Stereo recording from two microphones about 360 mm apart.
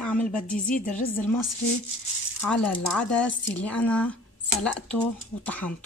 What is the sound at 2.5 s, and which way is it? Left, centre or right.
Speech, centre.